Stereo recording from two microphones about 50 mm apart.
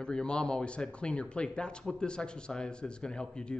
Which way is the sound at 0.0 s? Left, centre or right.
Centre.